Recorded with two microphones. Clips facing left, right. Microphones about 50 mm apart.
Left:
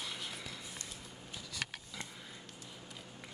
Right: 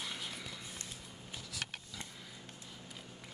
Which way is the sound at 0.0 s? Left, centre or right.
Centre.